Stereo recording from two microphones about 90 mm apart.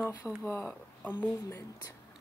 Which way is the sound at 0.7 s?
20° left (ahead or behind).